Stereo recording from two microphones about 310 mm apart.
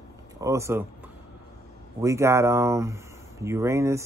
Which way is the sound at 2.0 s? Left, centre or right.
Centre.